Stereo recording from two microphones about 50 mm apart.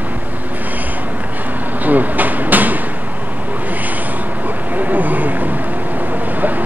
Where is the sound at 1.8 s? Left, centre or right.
Right.